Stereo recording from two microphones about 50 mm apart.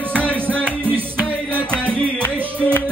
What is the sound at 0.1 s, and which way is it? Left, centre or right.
Music, left.